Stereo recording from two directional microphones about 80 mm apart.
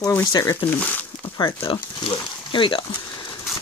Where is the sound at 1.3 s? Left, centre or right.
Left.